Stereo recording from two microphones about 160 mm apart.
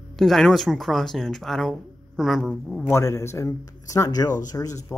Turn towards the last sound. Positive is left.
turn(degrees=20)  # may be behind; listen again after turning